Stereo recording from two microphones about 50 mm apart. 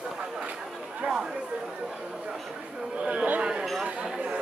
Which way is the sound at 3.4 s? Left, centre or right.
Centre.